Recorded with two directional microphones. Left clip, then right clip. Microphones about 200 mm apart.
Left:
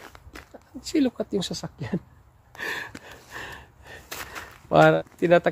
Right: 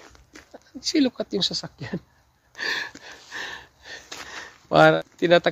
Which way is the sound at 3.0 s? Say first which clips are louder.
Right 4 dB; 25° right (ahead or behind).